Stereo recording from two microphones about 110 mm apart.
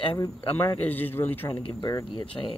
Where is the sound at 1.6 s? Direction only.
45° left (ahead or behind).